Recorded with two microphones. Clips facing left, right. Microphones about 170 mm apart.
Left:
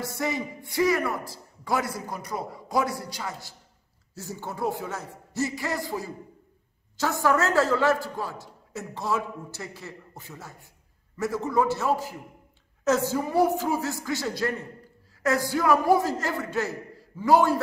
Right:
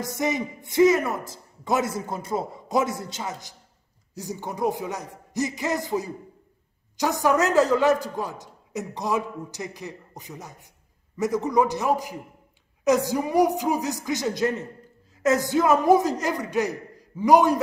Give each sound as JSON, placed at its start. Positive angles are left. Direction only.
{"t": 0.0, "sound": "a man's voice", "side_deg": -20}